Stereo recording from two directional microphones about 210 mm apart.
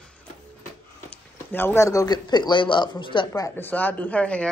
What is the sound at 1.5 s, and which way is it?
Speech, 10° left (ahead or behind).